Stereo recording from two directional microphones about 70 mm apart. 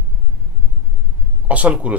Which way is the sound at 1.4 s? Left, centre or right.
Right.